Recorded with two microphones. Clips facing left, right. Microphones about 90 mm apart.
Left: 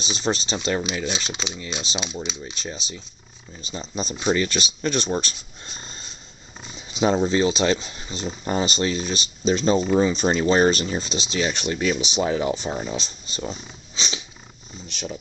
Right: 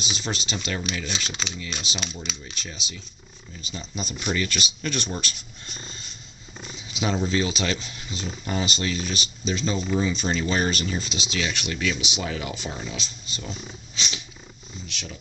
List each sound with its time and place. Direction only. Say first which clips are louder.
0.0 s speech: left 6 dB; 30° left (ahead or behind)
0.8 s speech: left 4 dB; 20° left (ahead or behind)
2.5 s speech: left 4 dB; 30° left (ahead or behind)
5.8 s wild animals: even; 30° left (ahead or behind)
6.9 s speech: left 6 dB; 35° left (ahead or behind)